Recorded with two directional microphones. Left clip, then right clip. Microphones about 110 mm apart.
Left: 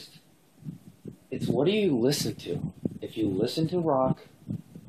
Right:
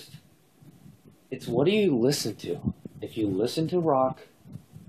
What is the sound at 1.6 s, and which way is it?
Speech, 50° right (ahead or behind).